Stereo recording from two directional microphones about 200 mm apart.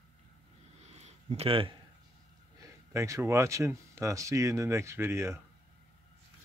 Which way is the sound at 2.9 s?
15° right (ahead or behind).